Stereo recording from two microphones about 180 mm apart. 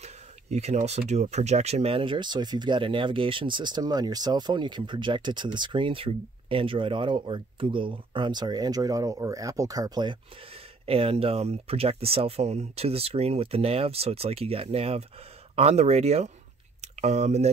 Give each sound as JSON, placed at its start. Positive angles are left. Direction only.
{"t": 0.0, "sound": "speech", "side_deg": -35}